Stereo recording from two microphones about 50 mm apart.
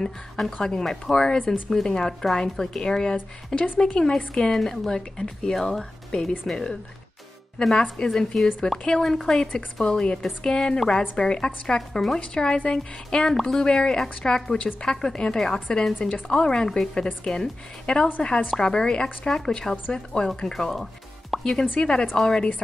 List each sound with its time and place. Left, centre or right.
0.6 s a woman's voice: centre
12.2 s speech: left